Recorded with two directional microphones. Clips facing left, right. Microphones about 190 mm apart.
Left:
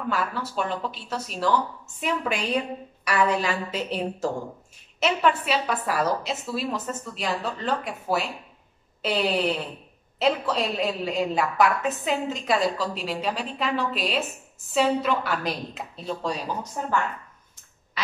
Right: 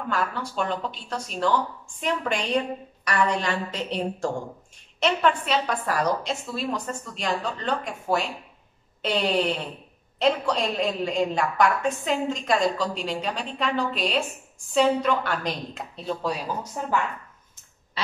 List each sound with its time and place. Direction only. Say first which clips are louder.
0.1 s a woman's voice: right 1 dB; 5° left (ahead or behind)
18.0 s quack: right 1 dB; 30° right (ahead or behind)